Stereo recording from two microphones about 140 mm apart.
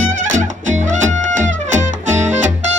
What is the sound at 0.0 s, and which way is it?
Music, 60° right (ahead or behind).